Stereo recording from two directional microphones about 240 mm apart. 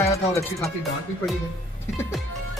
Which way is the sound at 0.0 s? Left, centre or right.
Centre.